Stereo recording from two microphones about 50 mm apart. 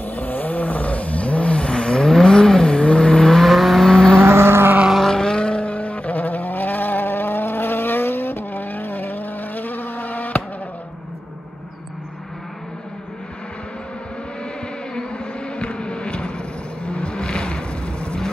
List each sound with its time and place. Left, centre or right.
0.0 s vehicle: left; by 4.2 s centre
4.2 s vehicle: right
4.9 s vehicle: centre; by 10.4 s left
15.0 s bee: centre
16.8 s vehicle: centre